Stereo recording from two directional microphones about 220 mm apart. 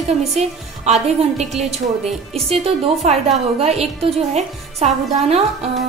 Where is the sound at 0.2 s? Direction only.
30° right (ahead or behind).